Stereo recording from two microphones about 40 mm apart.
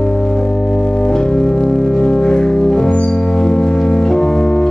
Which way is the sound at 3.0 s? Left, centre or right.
Centre.